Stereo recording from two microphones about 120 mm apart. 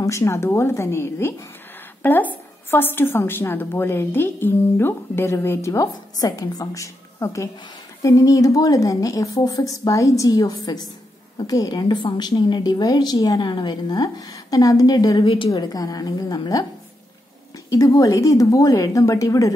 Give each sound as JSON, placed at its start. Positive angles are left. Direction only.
{"t": 0.0, "sound": "a woman's voice", "side_deg": 25}
{"t": 15.2, "sound": "a woman's voice", "side_deg": 45}
{"t": 15.5, "sound": "a woman's voice", "side_deg": 30}
{"t": 17.6, "sound": "a woman's voice", "side_deg": 30}